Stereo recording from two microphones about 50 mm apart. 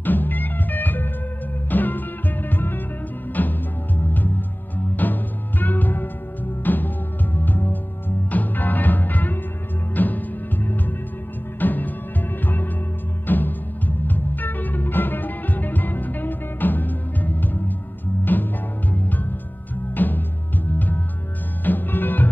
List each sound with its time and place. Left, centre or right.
0.0 s music: left